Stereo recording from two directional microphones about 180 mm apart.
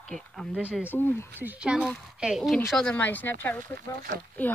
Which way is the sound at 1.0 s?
10° left (ahead or behind).